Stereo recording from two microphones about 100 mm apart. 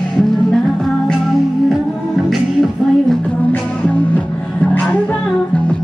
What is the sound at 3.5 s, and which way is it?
Music, 15° left (ahead or behind).